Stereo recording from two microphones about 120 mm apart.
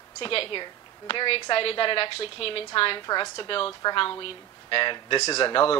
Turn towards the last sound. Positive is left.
turn(degrees=50)  # may be behind; listen again after turning